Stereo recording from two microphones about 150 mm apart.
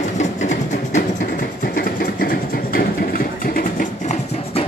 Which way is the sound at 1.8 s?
80° left.